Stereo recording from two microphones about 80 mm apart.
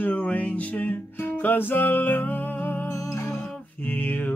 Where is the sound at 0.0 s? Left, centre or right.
Left.